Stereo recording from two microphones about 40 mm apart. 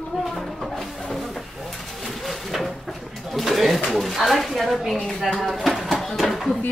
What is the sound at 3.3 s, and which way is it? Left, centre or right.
Pigeon, centre.